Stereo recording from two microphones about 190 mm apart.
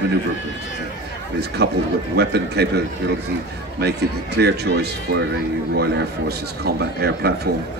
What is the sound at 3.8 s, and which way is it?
Speech, 60° right (ahead or behind).